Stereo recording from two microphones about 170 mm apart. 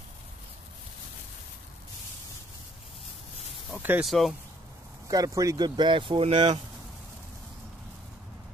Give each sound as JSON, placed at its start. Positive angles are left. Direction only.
{"t": 3.7, "sound": "speech", "side_deg": -10}
{"t": 4.1, "sound": "speech", "side_deg": 0}
{"t": 5.0, "sound": "speech", "side_deg": -20}